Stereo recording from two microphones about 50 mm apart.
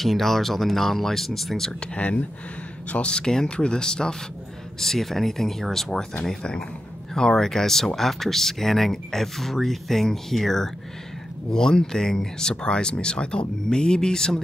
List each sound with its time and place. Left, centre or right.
0.0 s speech: centre
2.0 s speech: left